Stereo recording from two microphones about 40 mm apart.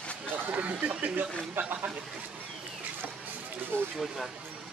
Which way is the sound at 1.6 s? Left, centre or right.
Right.